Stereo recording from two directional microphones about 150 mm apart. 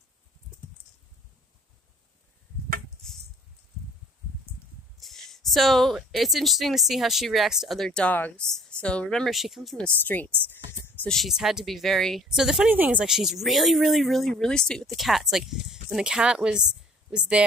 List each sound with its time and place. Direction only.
5.0 s speech: centre (ahead or behind)